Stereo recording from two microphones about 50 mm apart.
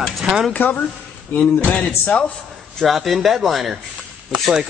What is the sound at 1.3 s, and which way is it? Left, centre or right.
Speech, left.